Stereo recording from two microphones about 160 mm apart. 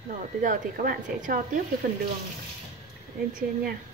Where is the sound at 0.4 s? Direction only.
55° right (ahead or behind).